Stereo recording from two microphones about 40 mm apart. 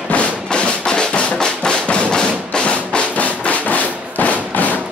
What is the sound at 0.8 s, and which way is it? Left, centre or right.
Drum, left.